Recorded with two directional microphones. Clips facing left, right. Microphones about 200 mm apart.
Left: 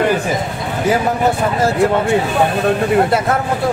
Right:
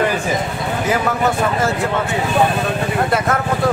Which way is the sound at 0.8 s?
30° left (ahead or behind).